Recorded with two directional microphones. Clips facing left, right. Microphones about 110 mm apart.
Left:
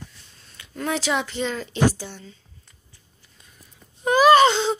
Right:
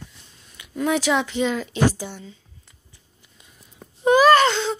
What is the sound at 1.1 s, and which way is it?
A woman's voice, 5° right (ahead or behind).